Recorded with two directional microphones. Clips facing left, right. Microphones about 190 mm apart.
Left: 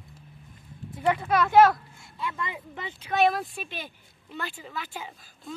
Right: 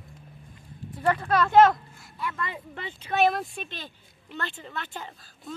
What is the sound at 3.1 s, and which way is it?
Speech, centre (ahead or behind).